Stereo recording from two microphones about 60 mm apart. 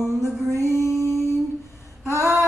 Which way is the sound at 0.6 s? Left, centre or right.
Left.